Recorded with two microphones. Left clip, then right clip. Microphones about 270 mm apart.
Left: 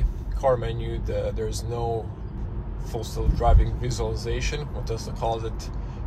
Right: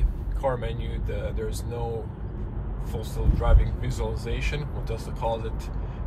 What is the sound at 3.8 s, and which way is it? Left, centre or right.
Speech, left.